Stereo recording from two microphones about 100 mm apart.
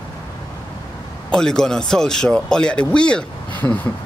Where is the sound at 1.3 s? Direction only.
5° left (ahead or behind).